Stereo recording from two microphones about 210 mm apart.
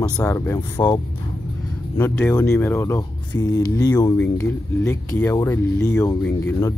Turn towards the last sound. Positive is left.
turn(degrees=15)  # may be behind; listen again after turning